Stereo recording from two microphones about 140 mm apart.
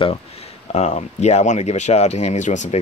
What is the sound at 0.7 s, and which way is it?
Speech, 55° left (ahead or behind).